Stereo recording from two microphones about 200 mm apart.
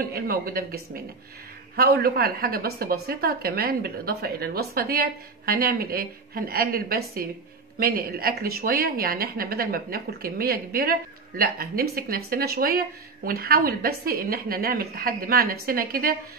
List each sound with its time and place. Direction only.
0.1 s a woman's voice: 50° right (ahead or behind)
1.8 s a woman's voice: 50° right (ahead or behind)